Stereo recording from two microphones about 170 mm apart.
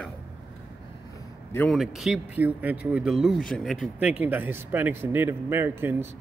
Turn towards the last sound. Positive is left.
turn(degrees=-15)  # may be behind; listen again after turning